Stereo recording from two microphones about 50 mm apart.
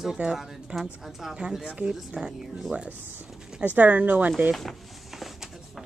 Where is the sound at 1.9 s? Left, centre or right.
Centre.